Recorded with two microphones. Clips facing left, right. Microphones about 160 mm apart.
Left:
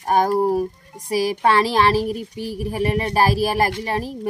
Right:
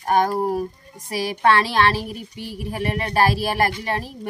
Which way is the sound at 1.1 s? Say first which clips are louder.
Left 1 dB; 40° left (ahead or behind).